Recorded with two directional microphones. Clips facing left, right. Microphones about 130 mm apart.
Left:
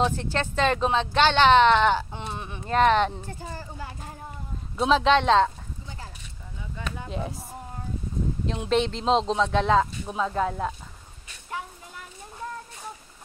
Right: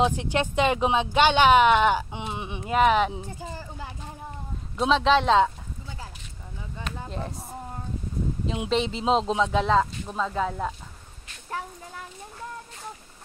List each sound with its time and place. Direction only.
0.0 s speech: 15° right (ahead or behind)
4.7 s speech: centre (ahead or behind)
7.1 s speech: centre (ahead or behind)
8.5 s speech: centre (ahead or behind)